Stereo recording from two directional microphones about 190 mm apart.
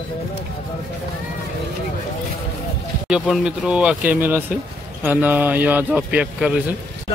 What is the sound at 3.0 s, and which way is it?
A man's voice, 5° right (ahead or behind).